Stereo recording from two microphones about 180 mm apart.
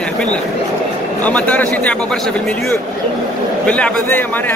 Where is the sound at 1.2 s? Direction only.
10° left (ahead or behind).